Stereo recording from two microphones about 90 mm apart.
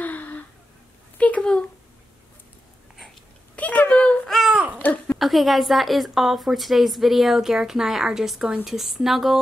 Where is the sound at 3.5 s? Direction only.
15° left (ahead or behind).